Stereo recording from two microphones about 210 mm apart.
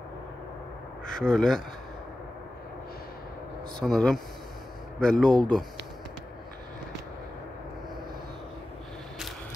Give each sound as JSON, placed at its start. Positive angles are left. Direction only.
{"t": 1.1, "sound": "speech", "side_deg": 5}
{"t": 3.8, "sound": "speech", "side_deg": 0}